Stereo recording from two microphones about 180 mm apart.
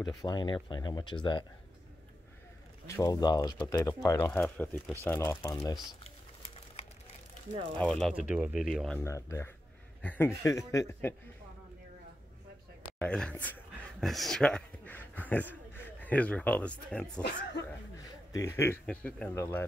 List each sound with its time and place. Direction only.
0.0 s speech: 20° left (ahead or behind)
3.0 s speech: 20° left (ahead or behind)
7.8 s speech: centre (ahead or behind)
8.6 s speech: centre (ahead or behind)
9.0 s speech: 15° left (ahead or behind)
13.0 s speech: 5° left (ahead or behind)
18.3 s speech: 15° left (ahead or behind)